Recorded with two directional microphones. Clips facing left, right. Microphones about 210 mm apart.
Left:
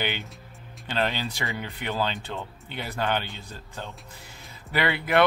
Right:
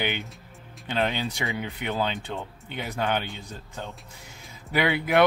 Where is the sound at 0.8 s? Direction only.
15° right (ahead or behind).